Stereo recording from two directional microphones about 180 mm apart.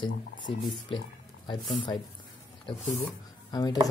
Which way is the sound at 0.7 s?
30° left (ahead or behind).